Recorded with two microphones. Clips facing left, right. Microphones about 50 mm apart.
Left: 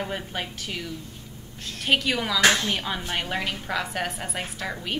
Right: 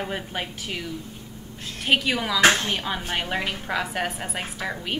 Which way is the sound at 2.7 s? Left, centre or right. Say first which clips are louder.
Right 1 dB; centre.